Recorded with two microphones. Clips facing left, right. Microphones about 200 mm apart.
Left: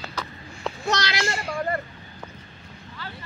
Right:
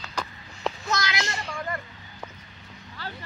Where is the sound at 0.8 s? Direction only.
35° left (ahead or behind).